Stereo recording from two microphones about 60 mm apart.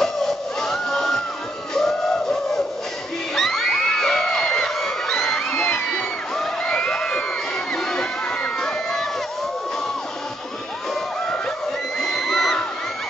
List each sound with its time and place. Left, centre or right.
0.0 s a sound: centre
3.3 s music: centre
5.5 s music: left
6.3 s crowd: centre
12.0 s crowd: centre